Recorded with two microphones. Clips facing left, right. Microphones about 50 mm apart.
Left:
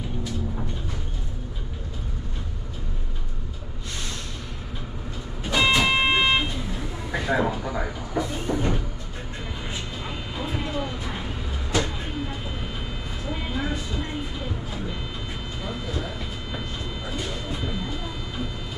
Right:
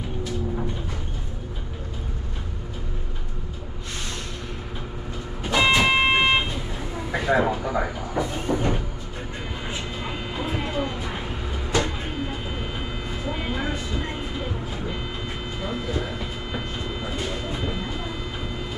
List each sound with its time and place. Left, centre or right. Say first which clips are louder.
5.4 s vehicle: right 1 dB; centre
10.0 s vehicle: right 3 dB; centre
11.8 s a sound: right 2 dB; centre
13.3 s vehicle: even; centre
15.6 s train: right 3 dB; centre